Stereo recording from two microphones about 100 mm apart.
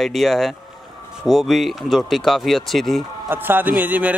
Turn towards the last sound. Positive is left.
turn(degrees=-15)  # may be behind; listen again after turning